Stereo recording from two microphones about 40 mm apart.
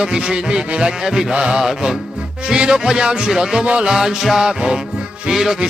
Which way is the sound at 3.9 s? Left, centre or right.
Centre.